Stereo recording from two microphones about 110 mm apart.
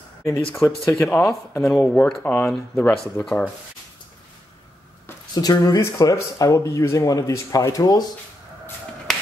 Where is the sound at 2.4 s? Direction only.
25° left (ahead or behind).